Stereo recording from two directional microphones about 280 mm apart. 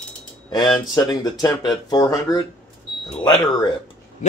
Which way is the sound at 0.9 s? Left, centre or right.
Centre.